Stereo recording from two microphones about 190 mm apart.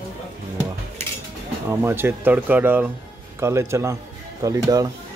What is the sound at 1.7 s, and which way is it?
Speech, 10° right (ahead or behind).